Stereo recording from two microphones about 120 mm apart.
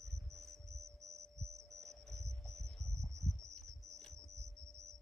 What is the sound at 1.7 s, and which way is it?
Cricket, centre (ahead or behind).